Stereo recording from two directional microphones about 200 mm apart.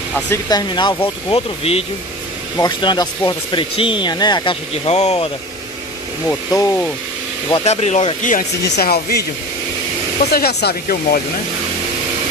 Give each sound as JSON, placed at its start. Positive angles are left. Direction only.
{"t": 0.5, "sound": "speech", "side_deg": 20}
{"t": 6.2, "sound": "speech", "side_deg": 10}
{"t": 7.4, "sound": "speech", "side_deg": 30}
{"t": 8.6, "sound": "speech", "side_deg": 55}
{"t": 10.3, "sound": "speech", "side_deg": 50}